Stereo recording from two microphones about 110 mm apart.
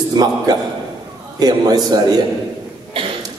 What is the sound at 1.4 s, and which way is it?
Speech, 35° right (ahead or behind).